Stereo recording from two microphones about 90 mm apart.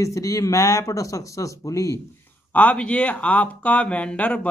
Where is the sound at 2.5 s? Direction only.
15° left (ahead or behind).